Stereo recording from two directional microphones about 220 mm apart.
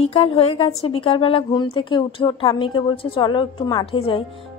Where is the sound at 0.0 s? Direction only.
25° left (ahead or behind).